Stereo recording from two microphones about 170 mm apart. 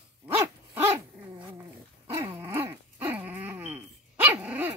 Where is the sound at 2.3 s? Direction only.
15° right (ahead or behind).